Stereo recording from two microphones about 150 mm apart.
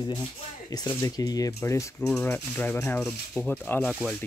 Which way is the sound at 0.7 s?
25° left (ahead or behind).